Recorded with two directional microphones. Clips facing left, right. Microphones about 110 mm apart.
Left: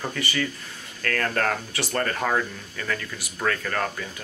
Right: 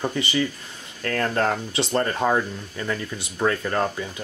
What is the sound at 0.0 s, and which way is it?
Speech, 20° right (ahead or behind).